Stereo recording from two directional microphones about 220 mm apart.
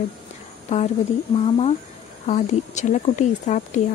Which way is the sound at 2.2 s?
35° left (ahead or behind).